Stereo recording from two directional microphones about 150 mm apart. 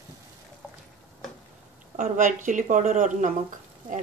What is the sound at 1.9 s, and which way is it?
Speech, 55° right (ahead or behind).